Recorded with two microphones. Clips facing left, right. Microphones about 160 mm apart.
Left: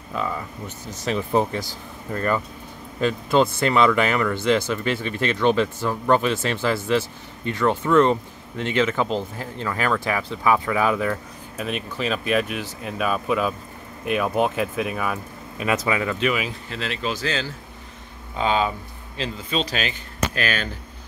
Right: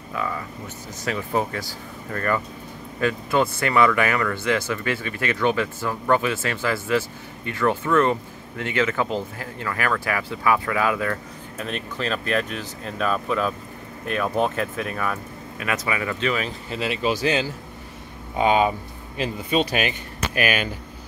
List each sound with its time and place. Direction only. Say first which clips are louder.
0.1 s speech: left 1 dB; 20° left (ahead or behind)
16.7 s speech: right 5 dB; 10° right (ahead or behind)
19.7 s speech: right 3 dB; 10° right (ahead or behind)